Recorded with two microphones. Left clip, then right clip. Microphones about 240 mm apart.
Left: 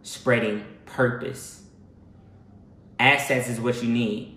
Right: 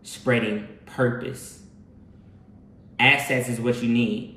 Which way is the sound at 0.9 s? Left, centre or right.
Centre.